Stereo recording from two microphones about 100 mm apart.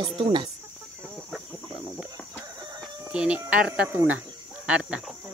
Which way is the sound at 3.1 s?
10° right (ahead or behind).